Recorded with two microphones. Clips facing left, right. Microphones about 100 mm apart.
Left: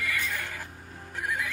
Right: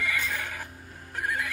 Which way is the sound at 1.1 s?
Centre (ahead or behind).